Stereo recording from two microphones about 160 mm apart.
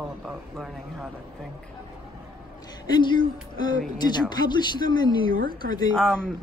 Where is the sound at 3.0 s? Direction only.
30° left (ahead or behind).